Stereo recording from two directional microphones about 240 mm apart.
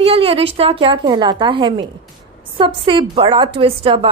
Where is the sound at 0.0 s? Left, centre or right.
Right.